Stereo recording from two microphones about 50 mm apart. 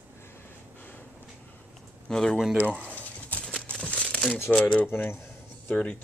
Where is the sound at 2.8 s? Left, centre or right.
Left.